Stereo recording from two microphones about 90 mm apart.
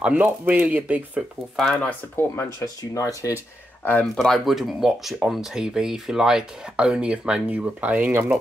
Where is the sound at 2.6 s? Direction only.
40° left (ahead or behind).